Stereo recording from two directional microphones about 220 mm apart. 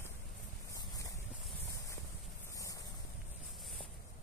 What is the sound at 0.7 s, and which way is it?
Wind, 15° left (ahead or behind).